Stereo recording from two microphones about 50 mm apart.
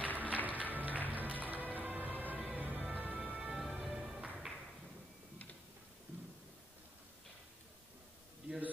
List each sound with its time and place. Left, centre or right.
0.1 s music: right
3.7 s music: centre